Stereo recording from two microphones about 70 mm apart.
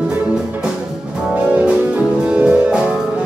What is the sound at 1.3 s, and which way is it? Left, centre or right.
Music, centre.